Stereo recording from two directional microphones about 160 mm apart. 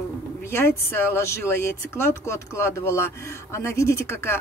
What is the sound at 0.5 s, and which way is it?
Speech, 15° left (ahead or behind).